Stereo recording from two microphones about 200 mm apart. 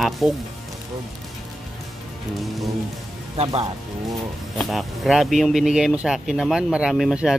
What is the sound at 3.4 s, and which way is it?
Speech, 30° right (ahead or behind).